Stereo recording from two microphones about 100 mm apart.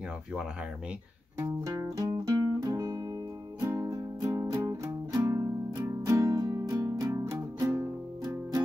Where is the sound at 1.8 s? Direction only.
35° right (ahead or behind).